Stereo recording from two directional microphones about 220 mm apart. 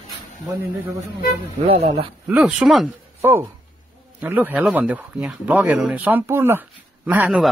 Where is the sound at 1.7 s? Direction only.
30° right (ahead or behind).